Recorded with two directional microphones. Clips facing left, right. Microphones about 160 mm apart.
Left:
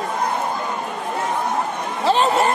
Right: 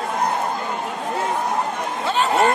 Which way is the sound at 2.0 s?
35° left (ahead or behind).